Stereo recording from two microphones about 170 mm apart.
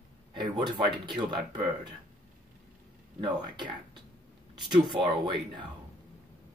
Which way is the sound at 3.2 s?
25° right (ahead or behind).